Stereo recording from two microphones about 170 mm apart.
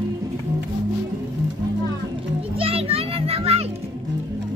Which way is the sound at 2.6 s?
35° right (ahead or behind).